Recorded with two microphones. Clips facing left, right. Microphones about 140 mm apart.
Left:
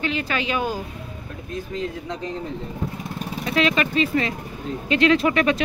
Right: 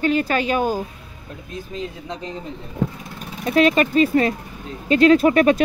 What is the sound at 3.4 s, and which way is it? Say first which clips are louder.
Speech: right 5 dB; 45° right (ahead or behind).